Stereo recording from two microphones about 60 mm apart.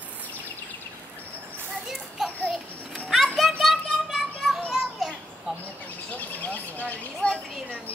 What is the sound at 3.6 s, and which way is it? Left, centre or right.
Child singing, centre.